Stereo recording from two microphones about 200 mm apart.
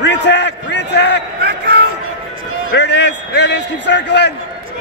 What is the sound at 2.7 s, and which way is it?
A man's voice, 60° left (ahead or behind).